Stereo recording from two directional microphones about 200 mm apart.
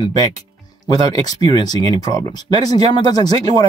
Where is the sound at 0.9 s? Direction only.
20° left (ahead or behind).